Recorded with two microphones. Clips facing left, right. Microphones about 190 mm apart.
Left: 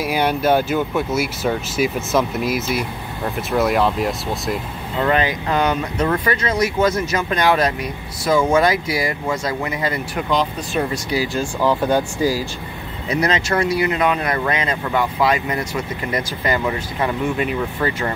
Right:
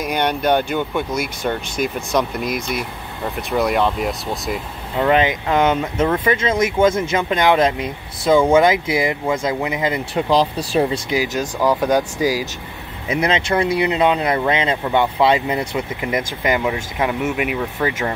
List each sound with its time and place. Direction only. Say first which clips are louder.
0.0 s speech: left 1 dB; 5° left (ahead or behind)
5.0 s speech: right 3 dB; 20° right (ahead or behind)
6.0 s speech: right 1 dB; 10° right (ahead or behind)
6.4 s speech: right 3 dB; 25° right (ahead or behind)
10.3 s speech: right 3 dB; 35° right (ahead or behind); by 12.4 s 15° right (ahead or behind)
13.3 s speech: right 3 dB; 25° right (ahead or behind); by 18.1 s 5° right (ahead or behind)